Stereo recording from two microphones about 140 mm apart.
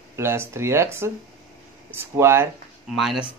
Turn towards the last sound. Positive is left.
turn(degrees=0)  # may be behind; listen again after turning